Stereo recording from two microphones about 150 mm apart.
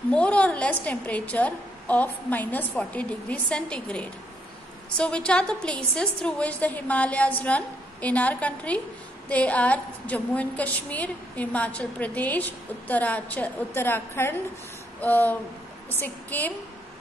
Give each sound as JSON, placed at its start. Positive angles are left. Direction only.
{"t": 0.1, "sound": "a woman's voice", "side_deg": 10}